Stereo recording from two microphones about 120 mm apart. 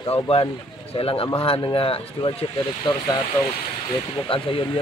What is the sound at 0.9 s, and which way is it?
Speech, 50° left (ahead or behind).